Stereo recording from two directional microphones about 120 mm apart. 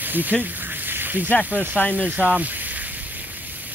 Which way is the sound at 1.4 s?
15° right (ahead or behind).